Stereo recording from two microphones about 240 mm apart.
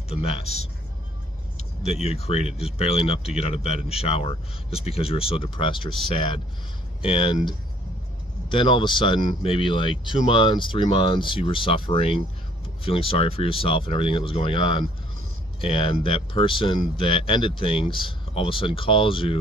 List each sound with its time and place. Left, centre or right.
0.1 s speech: left
1.8 s speech: left
8.5 s speech: left